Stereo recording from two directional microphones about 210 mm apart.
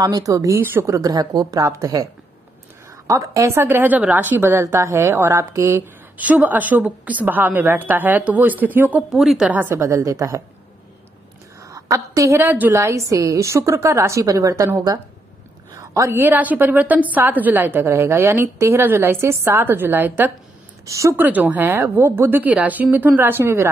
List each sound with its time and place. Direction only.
0.0 s a woman's voice: 15° right (ahead or behind)
3.1 s a woman's voice: 15° right (ahead or behind)
11.6 s a woman's voice: 15° right (ahead or behind)